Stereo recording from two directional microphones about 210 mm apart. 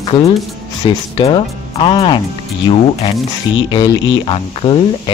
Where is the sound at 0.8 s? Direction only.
25° left (ahead or behind).